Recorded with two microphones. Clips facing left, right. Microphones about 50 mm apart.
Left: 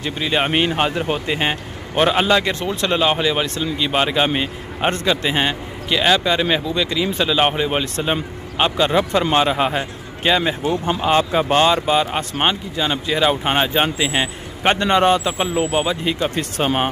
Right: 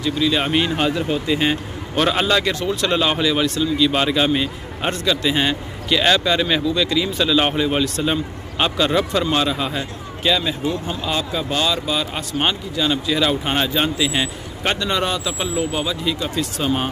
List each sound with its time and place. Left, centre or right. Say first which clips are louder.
0.0 s speech: right 1 dB; left